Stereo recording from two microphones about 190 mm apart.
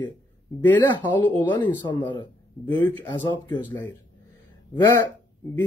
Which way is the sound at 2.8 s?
10° left (ahead or behind).